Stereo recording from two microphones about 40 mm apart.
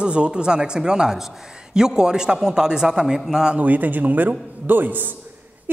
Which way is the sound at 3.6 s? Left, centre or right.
Right.